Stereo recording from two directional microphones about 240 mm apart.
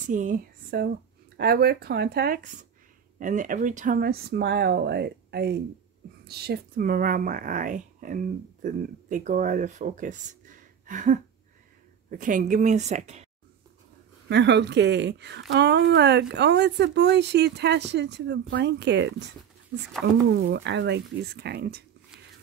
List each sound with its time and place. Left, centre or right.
0.0 s a woman's voice: right
14.3 s speech: right
20.3 s speech: right